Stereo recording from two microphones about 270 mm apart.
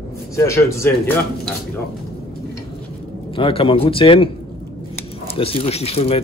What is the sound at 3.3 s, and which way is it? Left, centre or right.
Speech, centre.